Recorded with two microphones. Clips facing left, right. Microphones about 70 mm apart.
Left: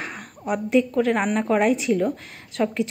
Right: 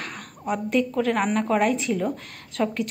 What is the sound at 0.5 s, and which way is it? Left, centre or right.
A woman's voice, centre.